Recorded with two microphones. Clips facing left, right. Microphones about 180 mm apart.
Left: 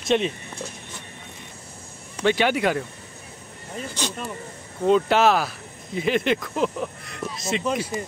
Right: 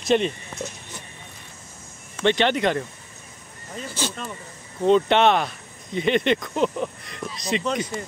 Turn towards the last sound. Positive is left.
turn(degrees=5)  # may be behind; listen again after turning